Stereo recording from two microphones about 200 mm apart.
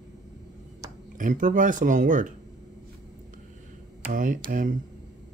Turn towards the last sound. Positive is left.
turn(degrees=-45)  # may be behind; listen again after turning